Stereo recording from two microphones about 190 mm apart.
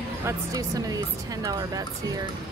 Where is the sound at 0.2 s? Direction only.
15° right (ahead or behind).